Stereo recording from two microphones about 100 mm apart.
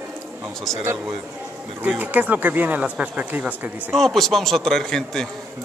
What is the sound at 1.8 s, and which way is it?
Speech, 15° right (ahead or behind).